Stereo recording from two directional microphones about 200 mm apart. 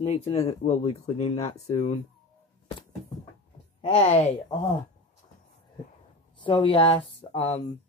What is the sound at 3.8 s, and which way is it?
Speech, 30° left (ahead or behind).